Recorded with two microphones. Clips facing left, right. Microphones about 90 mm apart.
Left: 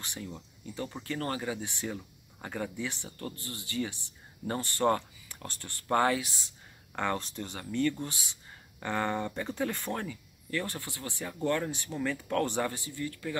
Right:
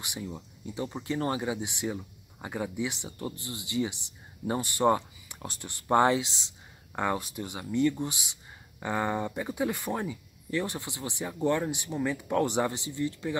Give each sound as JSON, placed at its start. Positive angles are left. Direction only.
{"t": 0.0, "sound": "speech", "side_deg": -15}
{"t": 7.0, "sound": "speech", "side_deg": -10}